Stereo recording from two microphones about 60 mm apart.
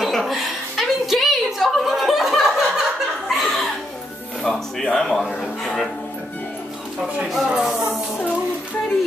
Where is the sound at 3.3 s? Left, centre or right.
Centre.